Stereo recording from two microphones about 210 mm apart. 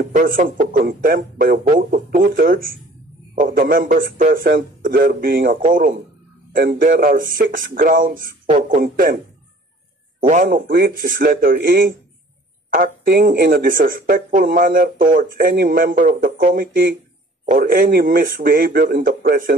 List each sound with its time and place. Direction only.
0.0 s speech: 40° right (ahead or behind)
10.2 s speech: 40° right (ahead or behind)